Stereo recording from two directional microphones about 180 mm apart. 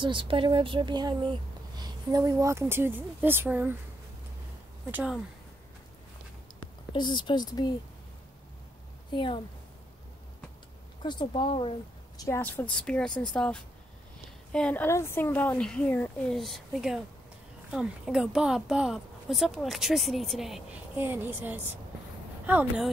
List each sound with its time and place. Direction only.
0.0 s speech: 30° right (ahead or behind); by 3.7 s 10° right (ahead or behind)
4.9 s speech: 5° right (ahead or behind)
6.9 s speech: 25° left (ahead or behind)
9.1 s speech: 25° left (ahead or behind)
11.0 s speech: 25° left (ahead or behind)
12.2 s speech: 10° left (ahead or behind); by 22.8 s 10° right (ahead or behind)